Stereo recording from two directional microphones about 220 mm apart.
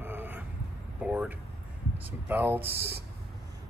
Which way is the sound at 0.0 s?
10° right (ahead or behind).